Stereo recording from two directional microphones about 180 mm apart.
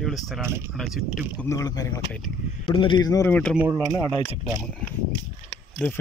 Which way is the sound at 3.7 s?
25° right (ahead or behind).